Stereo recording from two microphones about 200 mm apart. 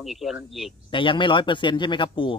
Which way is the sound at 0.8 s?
25° left (ahead or behind).